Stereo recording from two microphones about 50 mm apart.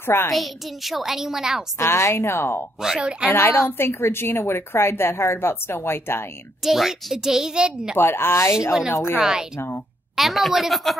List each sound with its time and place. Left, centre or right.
0.0 s a woman's voice: left
0.3 s a woman's voice: centre
1.8 s speech: left
2.8 s a child's voice: centre
3.3 s a woman's voice: left
3.5 s a woman's voice: left
6.6 s a child's voice: centre
8.0 s a woman's voice: left
9.2 s a child's voice: centre